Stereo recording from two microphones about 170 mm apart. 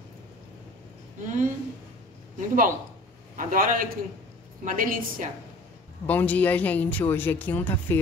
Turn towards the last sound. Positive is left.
turn(degrees=10)  # may be behind; listen again after turning